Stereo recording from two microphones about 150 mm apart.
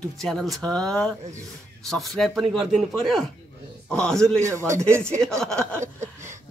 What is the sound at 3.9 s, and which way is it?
Speech, 5° left (ahead or behind).